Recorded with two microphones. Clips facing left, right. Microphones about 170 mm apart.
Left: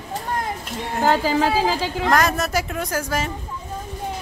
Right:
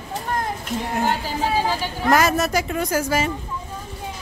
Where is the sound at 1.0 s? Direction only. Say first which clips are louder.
Left 9 dB; 90° left.